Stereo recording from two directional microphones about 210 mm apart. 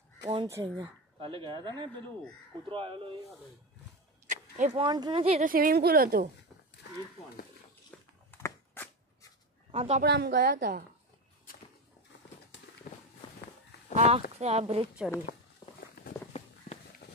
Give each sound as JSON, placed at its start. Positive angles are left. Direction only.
{"t": 0.2, "sound": "speech", "side_deg": -25}
{"t": 4.3, "sound": "speech", "side_deg": -35}
{"t": 5.5, "sound": "a woman's voice", "side_deg": -45}
{"t": 7.9, "sound": "a sound", "side_deg": 5}
{"t": 9.7, "sound": "speech", "side_deg": -30}
{"t": 10.0, "sound": "a woman's voice", "side_deg": -50}
{"t": 12.9, "sound": "walk", "side_deg": 35}
{"t": 13.9, "sound": "speech", "side_deg": -35}
{"t": 16.0, "sound": "a sound", "side_deg": 45}
{"t": 16.3, "sound": "run", "side_deg": 30}
{"t": 17.0, "sound": "a sound", "side_deg": 50}